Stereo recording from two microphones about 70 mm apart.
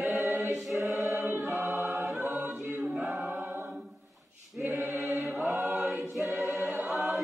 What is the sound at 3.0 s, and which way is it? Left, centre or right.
Choir, right.